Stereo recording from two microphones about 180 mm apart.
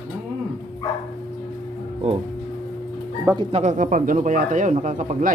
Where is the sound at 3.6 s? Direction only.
45° right (ahead or behind).